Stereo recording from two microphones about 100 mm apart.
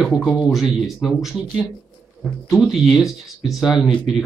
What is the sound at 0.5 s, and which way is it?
Speech, centre (ahead or behind).